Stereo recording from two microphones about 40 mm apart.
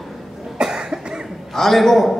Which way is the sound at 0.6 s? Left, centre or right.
Centre.